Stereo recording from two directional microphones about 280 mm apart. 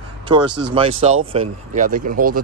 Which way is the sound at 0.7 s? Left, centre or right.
Right.